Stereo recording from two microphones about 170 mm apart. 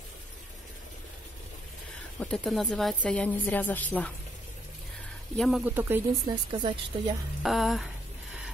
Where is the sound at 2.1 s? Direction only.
5° left (ahead or behind).